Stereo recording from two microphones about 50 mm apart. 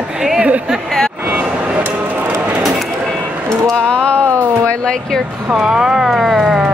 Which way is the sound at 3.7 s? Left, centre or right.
Centre.